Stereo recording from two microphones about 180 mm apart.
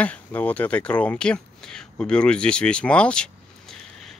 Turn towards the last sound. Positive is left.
turn(degrees=5)  # may be behind; listen again after turning